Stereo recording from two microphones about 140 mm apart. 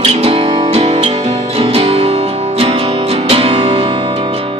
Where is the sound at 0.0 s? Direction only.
45° right (ahead or behind).